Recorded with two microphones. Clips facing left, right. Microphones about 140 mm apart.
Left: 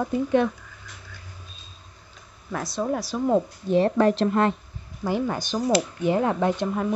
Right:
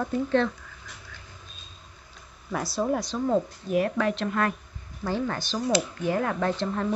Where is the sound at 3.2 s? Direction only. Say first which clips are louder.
Left 3 dB; 15° left (ahead or behind).